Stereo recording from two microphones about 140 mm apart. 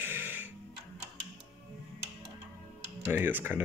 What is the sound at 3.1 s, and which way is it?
Speech, 15° right (ahead or behind).